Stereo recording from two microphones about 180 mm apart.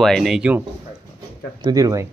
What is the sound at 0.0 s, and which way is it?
Speech, centre (ahead or behind).